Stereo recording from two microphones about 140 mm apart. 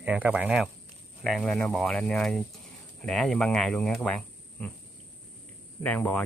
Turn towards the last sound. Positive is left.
turn(degrees=10)  # may be behind; listen again after turning